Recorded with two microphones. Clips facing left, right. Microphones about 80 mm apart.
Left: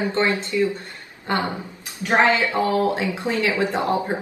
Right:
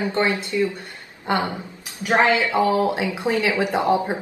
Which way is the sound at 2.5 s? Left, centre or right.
Right.